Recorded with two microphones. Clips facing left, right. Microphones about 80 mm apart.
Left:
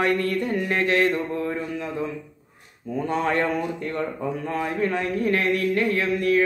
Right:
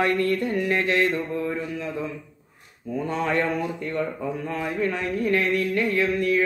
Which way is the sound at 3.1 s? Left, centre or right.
Left.